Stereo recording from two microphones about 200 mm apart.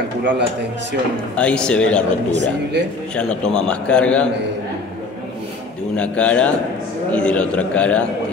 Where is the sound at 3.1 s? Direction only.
5° left (ahead or behind).